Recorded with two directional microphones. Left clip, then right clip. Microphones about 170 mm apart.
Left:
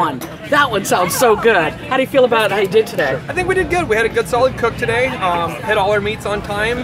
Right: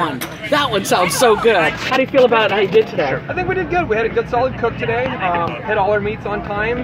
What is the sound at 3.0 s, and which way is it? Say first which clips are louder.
Speech: left 1 dB; 25° left (ahead or behind).